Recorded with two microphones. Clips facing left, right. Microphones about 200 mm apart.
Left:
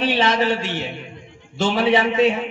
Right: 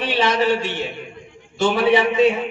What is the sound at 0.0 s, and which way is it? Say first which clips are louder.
A man's voice: even; 25° left (ahead or behind).